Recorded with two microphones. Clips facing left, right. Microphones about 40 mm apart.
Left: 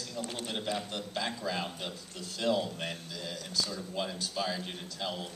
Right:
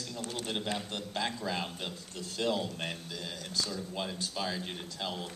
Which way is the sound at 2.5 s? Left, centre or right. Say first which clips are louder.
Left 3 dB; left.